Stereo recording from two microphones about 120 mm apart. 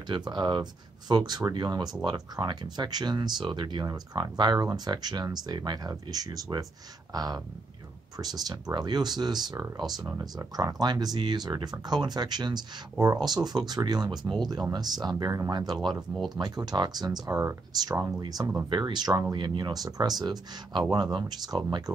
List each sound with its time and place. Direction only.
0.1 s speech: 35° right (ahead or behind); by 18.1 s 20° right (ahead or behind)
18.7 s speech: 35° right (ahead or behind)